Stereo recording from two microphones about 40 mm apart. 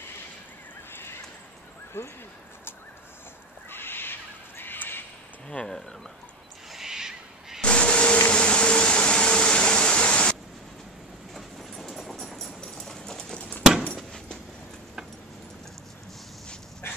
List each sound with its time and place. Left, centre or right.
0.9 s horse: left
2.0 s speech: left
3.7 s squawk: left
5.5 s speech: left
6.7 s owl: centre
7.6 s a sound: left
11.3 s train: centre
12.1 s a sound: centre
13.6 s keys jangling: centre